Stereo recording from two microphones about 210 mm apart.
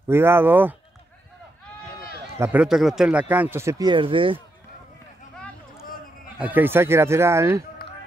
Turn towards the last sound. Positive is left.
turn(degrees=-15)  # may be behind; listen again after turning